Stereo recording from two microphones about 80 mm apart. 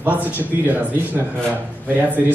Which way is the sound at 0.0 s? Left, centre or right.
Right.